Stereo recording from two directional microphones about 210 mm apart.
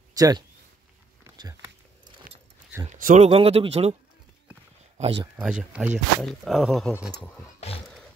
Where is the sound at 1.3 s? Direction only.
15° right (ahead or behind).